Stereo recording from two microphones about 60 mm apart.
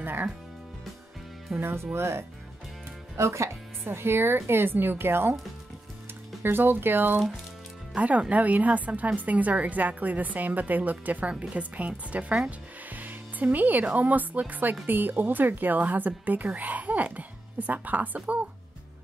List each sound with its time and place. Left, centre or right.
0.0 s speech: right
1.6 s speech: right
6.4 s speech: right
7.9 s a woman's voice: right
12.4 s music: right
14.5 s a woman's voice: right